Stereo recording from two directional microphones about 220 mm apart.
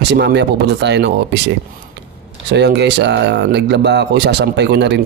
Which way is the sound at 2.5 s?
50° right (ahead or behind).